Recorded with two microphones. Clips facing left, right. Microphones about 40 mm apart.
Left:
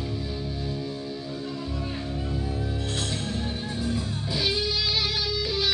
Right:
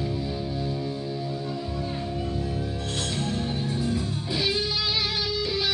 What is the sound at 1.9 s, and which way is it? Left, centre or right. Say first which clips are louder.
Music: right 1 dB; centre.